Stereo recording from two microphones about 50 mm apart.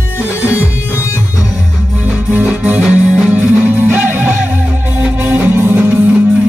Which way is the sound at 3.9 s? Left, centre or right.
Right.